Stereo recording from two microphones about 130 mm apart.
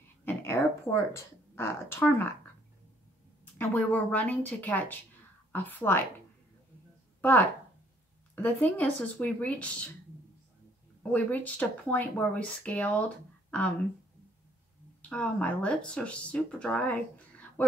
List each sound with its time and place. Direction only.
0.2 s a sound: 15° left (ahead or behind)
1.1 s speech: 20° left (ahead or behind)
3.5 s speech: 15° left (ahead or behind)
7.2 s speech: 10° left (ahead or behind)
11.0 s speech: 10° left (ahead or behind)
15.0 s speech: 10° left (ahead or behind)